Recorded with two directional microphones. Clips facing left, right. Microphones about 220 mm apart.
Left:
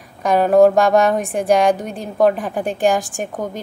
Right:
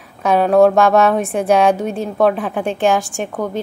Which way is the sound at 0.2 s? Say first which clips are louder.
Right 1 dB; centre (ahead or behind).